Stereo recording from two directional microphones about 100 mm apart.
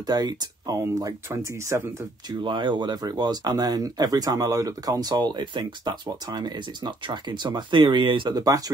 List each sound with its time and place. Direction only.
0.0 s speech: 40° right (ahead or behind)
2.2 s speech: 50° right (ahead or behind)